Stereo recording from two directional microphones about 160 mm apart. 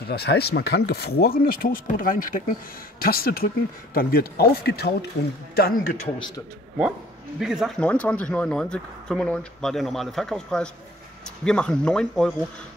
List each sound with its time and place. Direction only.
0.1 s speech: 85° left
5.6 s speech: 65° left (ahead or behind)
7.3 s speech: centre (ahead or behind)